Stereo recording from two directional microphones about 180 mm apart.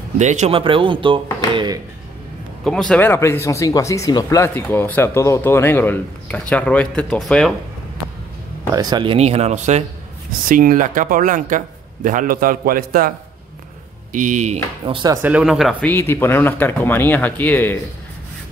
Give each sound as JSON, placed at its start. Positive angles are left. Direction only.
{"t": 0.2, "sound": "speech", "side_deg": -40}
{"t": 2.6, "sound": "speech", "side_deg": 5}
{"t": 8.7, "sound": "speech", "side_deg": -25}
{"t": 10.5, "sound": "a man's voice", "side_deg": -50}
{"t": 14.1, "sound": "speech", "side_deg": -45}
{"t": 15.2, "sound": "speech", "side_deg": -5}
{"t": 15.9, "sound": "speech", "side_deg": 10}